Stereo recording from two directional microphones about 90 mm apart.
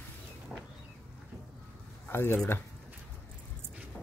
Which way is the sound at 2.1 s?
25° left (ahead or behind).